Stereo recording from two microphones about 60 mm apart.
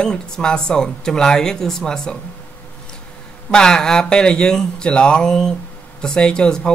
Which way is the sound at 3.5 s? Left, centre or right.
Centre.